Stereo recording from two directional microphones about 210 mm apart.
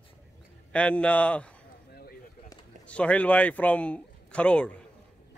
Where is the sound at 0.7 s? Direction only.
5° left (ahead or behind).